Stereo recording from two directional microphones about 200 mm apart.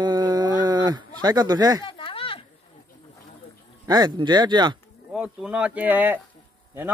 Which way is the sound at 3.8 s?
20° right (ahead or behind).